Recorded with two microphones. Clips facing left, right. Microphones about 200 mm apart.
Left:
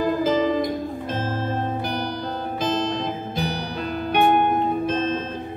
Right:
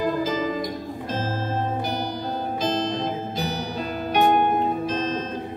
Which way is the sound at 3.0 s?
60° left (ahead or behind).